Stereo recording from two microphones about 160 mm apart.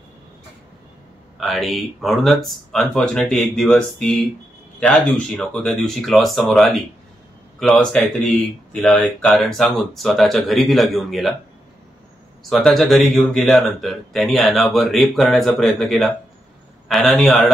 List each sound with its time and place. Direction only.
1.4 s speech: centre (ahead or behind)
12.4 s speech: centre (ahead or behind)